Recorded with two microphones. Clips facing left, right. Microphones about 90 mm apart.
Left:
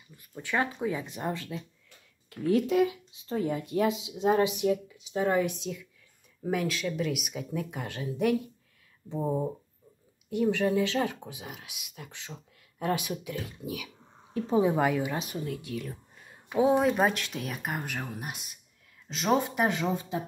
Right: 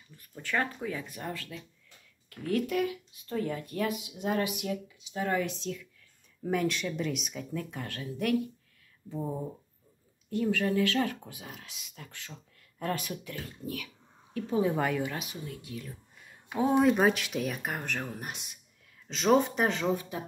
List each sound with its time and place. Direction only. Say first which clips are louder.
0.1 s speech: left 1 dB; 10° left (ahead or behind)
14.3 s a woman's voice: left 3 dB; 25° left (ahead or behind)
14.7 s speech: left 3 dB; 5° left (ahead or behind)
15.4 s speech: left 6 dB; 65° left (ahead or behind)
16.5 s speech: left 1 dB; 10° left (ahead or behind)
16.9 s speech: right 1 dB; centre (ahead or behind)